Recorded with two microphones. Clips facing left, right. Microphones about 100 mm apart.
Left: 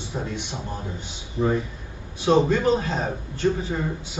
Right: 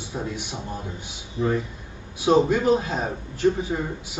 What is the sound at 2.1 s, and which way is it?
A man's voice, 10° right (ahead or behind).